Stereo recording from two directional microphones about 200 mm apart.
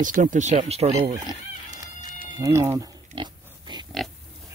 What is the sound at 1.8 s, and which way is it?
Music, 20° right (ahead or behind).